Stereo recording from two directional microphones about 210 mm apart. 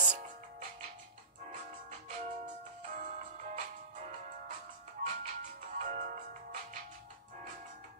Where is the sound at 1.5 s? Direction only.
35° right (ahead or behind).